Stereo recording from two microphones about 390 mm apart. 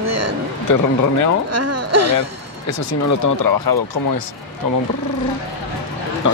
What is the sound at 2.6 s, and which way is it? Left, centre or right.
Speech, left.